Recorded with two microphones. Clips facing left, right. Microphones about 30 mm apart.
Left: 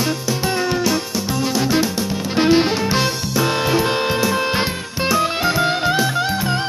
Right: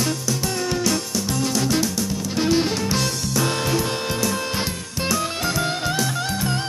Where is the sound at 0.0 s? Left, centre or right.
Left.